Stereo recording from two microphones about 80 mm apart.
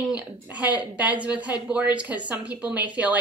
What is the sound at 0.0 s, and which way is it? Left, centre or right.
Speech, centre.